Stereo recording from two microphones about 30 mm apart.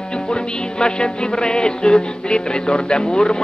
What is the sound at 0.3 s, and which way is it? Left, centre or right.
Music, left.